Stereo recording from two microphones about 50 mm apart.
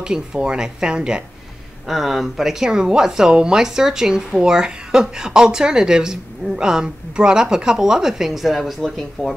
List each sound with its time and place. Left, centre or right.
0.0 s a woman's voice: centre
1.9 s a woman's voice: centre